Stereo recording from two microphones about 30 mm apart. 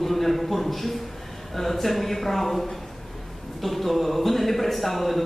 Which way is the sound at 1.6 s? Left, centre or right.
Centre.